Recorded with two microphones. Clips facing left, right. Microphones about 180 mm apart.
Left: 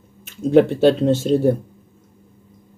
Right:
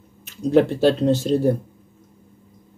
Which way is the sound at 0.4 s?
Centre (ahead or behind).